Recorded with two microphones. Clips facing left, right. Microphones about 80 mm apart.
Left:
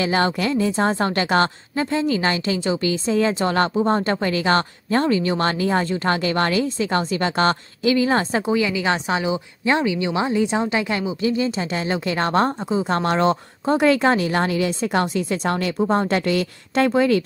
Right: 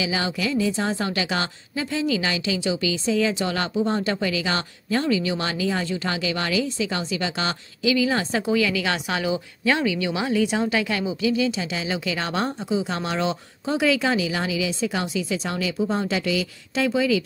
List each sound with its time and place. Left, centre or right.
0.0 s speech: left